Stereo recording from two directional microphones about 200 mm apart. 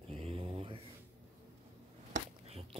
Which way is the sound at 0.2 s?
30° right (ahead or behind).